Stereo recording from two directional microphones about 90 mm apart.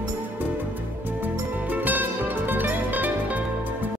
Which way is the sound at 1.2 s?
20° right (ahead or behind).